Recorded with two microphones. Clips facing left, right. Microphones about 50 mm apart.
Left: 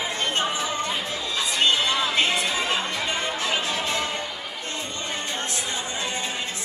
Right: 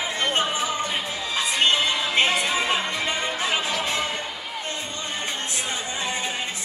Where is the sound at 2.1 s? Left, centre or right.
Right.